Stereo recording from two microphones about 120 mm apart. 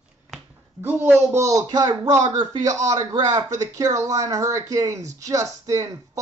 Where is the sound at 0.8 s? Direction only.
15° right (ahead or behind).